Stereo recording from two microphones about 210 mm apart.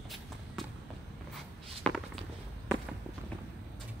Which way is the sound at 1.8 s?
5° left (ahead or behind).